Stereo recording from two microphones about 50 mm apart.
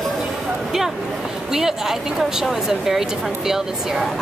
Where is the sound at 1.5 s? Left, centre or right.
Centre.